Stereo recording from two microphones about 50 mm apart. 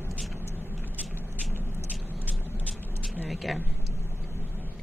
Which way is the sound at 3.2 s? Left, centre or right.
Centre.